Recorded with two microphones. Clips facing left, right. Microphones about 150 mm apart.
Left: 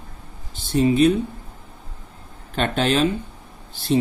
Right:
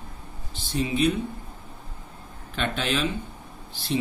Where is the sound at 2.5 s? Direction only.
45° left (ahead or behind).